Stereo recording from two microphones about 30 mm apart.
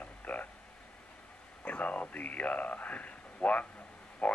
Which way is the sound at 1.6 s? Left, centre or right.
Left.